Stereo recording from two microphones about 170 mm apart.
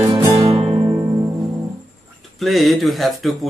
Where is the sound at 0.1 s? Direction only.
15° right (ahead or behind).